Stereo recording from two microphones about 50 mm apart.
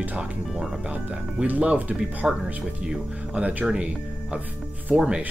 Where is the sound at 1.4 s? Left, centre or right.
Right.